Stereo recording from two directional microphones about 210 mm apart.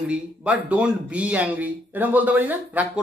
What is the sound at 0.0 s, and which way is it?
Speech, 5° right (ahead or behind).